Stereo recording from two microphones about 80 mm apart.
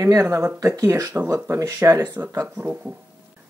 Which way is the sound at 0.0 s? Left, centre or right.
Right.